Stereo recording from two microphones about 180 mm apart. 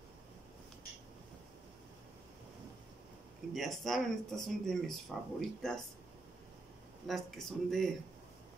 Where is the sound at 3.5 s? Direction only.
Centre (ahead or behind).